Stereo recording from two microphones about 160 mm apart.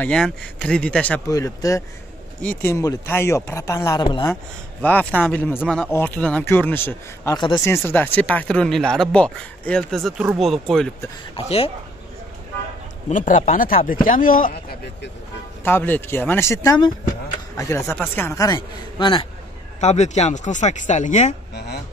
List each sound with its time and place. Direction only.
0.0 s speech: 5° left (ahead or behind)
1.3 s speech: 20° left (ahead or behind)
4.8 s speech: 10° left (ahead or behind)
7.3 s speech: 25° left (ahead or behind); by 10.9 s 5° left (ahead or behind)
11.3 s speech: 35° left (ahead or behind)
13.1 s speech: 50° left (ahead or behind)
15.6 s speech: 10° left (ahead or behind); by 19.2 s 30° left (ahead or behind)
19.8 s speech: 45° left (ahead or behind)